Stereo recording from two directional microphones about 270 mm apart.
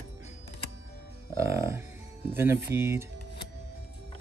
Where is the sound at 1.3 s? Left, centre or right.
Centre.